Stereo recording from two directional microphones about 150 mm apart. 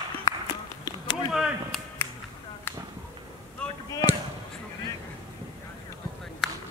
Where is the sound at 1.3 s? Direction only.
5° right (ahead or behind).